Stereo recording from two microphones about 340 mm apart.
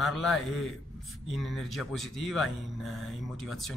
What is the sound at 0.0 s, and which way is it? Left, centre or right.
Speech, centre.